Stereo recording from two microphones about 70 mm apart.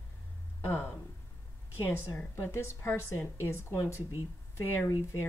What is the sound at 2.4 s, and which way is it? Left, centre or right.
Speech, left.